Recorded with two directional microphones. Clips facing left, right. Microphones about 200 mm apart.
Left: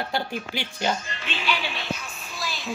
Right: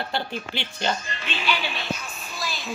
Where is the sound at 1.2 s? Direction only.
35° right (ahead or behind).